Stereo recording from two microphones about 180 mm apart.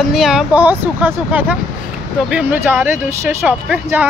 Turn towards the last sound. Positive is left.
turn(degrees=-10)  # may be behind; listen again after turning